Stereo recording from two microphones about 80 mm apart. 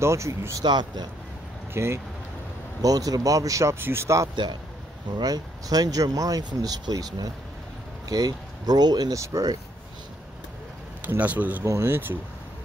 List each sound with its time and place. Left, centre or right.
0.0 s speech: right
0.7 s speech: right
1.7 s speech: right
2.8 s speech: right
3.8 s speech: right
5.1 s speech: right
9.1 s speech: right
11.0 s speech: right
11.6 s speech: right